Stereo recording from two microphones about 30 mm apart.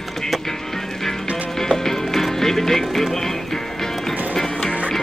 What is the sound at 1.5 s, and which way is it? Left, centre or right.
Music, centre.